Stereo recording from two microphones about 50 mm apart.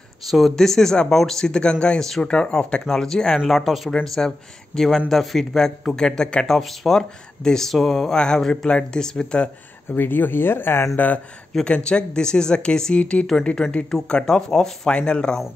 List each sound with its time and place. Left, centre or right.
0.2 s speech: centre
0.6 s speech: centre
6.4 s speech: centre
9.8 s speech: left
11.0 s speech: left
11.6 s speech: centre
13.0 s speech: left
13.8 s speech: centre